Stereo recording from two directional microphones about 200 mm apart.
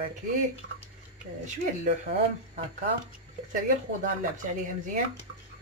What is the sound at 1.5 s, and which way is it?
Speech, 35° right (ahead or behind).